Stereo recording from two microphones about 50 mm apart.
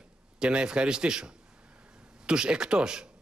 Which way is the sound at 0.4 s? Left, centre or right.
Centre.